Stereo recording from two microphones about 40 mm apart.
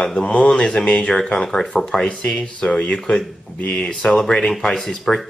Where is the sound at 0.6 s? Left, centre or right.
Left.